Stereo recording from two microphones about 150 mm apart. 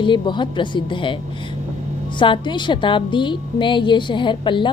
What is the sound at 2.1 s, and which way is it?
A woman's voice, 35° left (ahead or behind).